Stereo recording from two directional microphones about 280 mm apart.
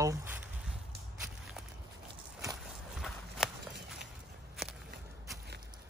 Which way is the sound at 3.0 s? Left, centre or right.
Centre.